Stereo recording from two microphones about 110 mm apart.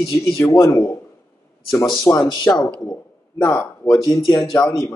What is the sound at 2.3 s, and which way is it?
Speech, 40° left (ahead or behind).